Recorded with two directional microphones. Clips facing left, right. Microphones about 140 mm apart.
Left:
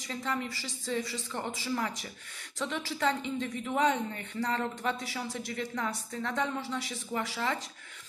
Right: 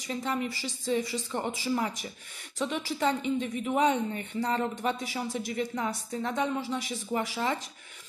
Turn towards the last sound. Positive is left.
turn(degrees=-15)  # may be behind; listen again after turning